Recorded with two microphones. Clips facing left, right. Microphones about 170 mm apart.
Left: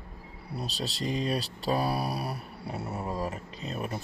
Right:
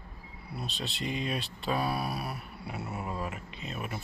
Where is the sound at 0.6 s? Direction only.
35° left (ahead or behind).